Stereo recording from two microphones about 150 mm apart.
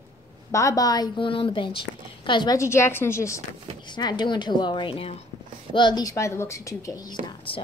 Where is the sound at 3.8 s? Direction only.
30° left (ahead or behind).